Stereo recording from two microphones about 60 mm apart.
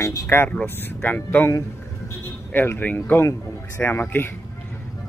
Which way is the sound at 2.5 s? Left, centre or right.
Left.